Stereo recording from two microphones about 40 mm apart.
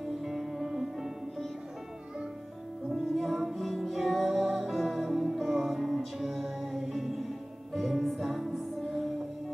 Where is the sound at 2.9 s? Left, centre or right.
Centre.